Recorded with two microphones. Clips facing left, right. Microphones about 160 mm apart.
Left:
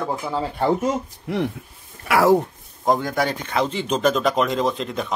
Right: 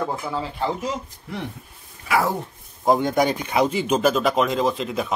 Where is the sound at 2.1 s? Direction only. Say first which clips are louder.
Left 6 dB; 80° left.